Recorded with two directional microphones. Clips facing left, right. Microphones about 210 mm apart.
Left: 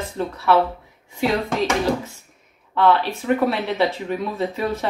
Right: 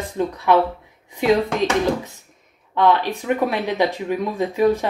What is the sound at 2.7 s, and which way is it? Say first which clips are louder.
Speech: even; 15° right (ahead or behind).